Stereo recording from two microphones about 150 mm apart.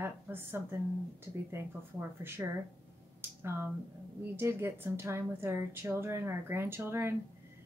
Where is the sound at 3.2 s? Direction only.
15° right (ahead or behind).